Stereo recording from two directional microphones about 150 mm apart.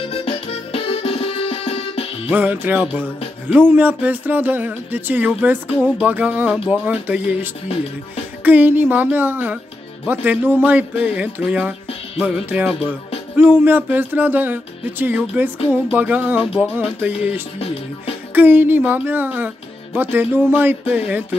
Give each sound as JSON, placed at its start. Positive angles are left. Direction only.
{"t": 0.0, "sound": "music", "side_deg": 40}
{"t": 2.2, "sound": "speech", "side_deg": -10}
{"t": 8.5, "sound": "speech", "side_deg": -10}
{"t": 18.3, "sound": "speech", "side_deg": -15}